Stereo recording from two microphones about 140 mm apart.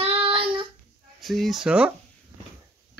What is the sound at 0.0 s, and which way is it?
Child singing, 45° right (ahead or behind).